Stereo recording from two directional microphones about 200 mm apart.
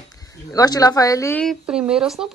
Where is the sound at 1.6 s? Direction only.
5° right (ahead or behind).